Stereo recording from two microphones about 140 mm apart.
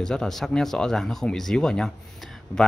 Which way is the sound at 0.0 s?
5° left (ahead or behind).